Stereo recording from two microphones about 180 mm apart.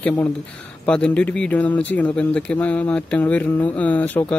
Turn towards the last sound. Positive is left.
turn(degrees=10)  # may be behind; listen again after turning